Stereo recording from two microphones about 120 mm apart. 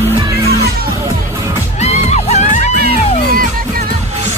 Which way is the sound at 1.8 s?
65° left (ahead or behind).